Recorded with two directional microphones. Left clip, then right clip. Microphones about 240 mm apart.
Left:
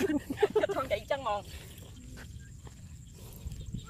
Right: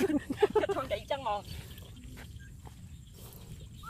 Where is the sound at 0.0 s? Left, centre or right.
Centre.